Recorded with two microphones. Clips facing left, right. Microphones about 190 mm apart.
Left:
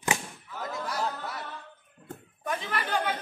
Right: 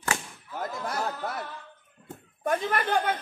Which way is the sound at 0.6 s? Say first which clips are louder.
Right 1 dB; 50° right (ahead or behind).